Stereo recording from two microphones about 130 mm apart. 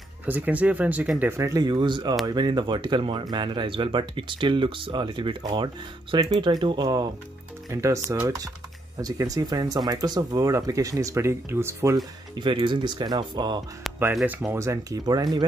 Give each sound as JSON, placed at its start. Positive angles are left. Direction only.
{"t": 0.3, "sound": "speech", "side_deg": -10}
{"t": 7.7, "sound": "speech", "side_deg": -25}
{"t": 12.4, "sound": "speech", "side_deg": -35}
{"t": 13.9, "sound": "music", "side_deg": 0}
{"t": 14.5, "sound": "speech", "side_deg": -20}